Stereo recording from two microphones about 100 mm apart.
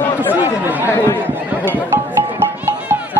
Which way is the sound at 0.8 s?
25° left (ahead or behind).